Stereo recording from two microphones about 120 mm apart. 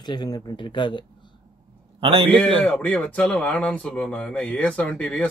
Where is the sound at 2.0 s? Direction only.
50° right (ahead or behind).